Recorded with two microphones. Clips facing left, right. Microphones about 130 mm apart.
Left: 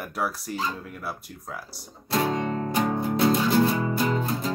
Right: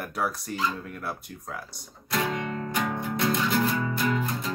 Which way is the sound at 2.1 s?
35° left (ahead or behind).